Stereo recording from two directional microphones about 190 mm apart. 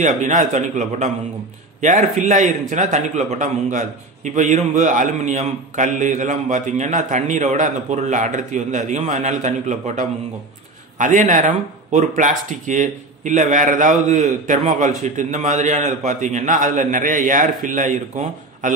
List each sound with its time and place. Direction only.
0.0 s speech: 40° right (ahead or behind)